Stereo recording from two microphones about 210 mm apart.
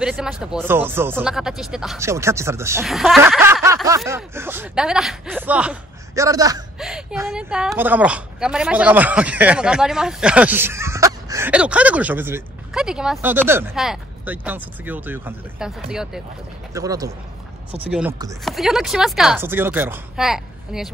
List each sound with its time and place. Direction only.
0.0 s speech: 5° right (ahead or behind)
2.0 s a woman's voice: 15° right (ahead or behind)
2.8 s speech: centre (ahead or behind)
3.6 s a woman's voice: 15° right (ahead or behind)
6.8 s a woman's voice: centre (ahead or behind)
16.7 s a woman's voice: 15° right (ahead or behind)